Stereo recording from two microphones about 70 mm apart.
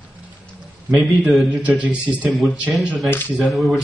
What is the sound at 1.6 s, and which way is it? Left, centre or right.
Speech, centre.